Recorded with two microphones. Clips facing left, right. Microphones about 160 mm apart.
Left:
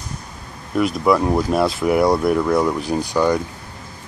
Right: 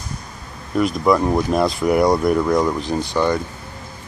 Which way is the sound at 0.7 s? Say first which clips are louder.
Even; 5° left (ahead or behind).